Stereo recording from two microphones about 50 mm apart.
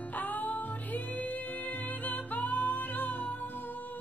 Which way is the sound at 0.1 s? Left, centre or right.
Left.